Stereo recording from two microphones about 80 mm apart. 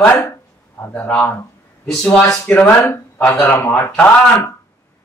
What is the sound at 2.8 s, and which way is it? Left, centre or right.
Speech, left.